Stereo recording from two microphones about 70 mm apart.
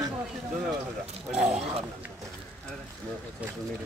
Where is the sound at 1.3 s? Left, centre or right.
Centre.